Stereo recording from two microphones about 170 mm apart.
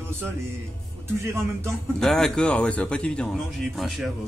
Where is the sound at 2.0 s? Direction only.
5° left (ahead or behind).